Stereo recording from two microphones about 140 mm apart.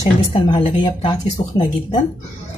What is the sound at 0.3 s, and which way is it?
Speech, 35° left (ahead or behind).